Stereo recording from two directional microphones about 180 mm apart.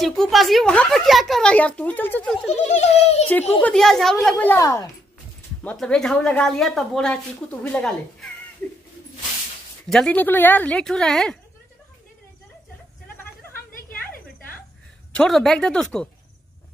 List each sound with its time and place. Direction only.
0.0 s a woman's voice: centre (ahead or behind)
2.5 s a child's voice: 40° left (ahead or behind)
3.6 s a woman's voice: 5° left (ahead or behind)
5.6 s a woman's voice: 5° left (ahead or behind)
9.8 s a woman's voice: 5° left (ahead or behind)
15.1 s a woman's voice: centre (ahead or behind)